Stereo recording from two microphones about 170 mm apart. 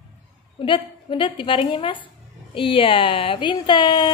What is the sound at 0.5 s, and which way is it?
A woman's voice, 30° left (ahead or behind).